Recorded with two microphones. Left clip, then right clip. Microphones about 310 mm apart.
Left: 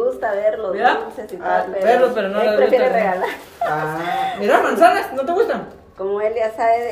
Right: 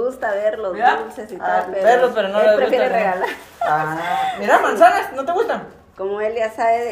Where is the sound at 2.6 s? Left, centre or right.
Right.